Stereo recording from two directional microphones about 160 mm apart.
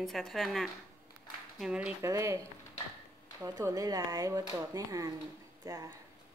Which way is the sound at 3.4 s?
20° right (ahead or behind).